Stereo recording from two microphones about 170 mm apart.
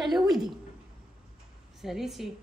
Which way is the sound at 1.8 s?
Centre (ahead or behind).